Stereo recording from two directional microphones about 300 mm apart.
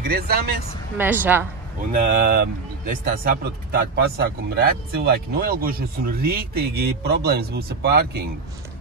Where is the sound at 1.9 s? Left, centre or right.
Right.